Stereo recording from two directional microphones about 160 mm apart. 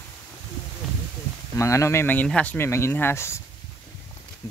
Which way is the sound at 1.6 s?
20° left (ahead or behind).